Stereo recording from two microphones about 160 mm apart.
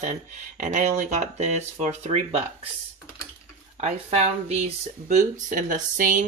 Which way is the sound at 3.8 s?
45° right (ahead or behind).